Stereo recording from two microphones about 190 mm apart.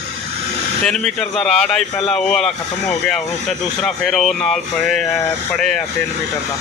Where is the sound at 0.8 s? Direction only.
5° left (ahead or behind).